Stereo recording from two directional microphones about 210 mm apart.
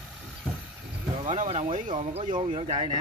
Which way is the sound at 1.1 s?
30° right (ahead or behind).